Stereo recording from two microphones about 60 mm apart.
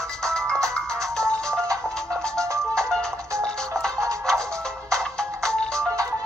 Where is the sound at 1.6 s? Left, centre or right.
Right.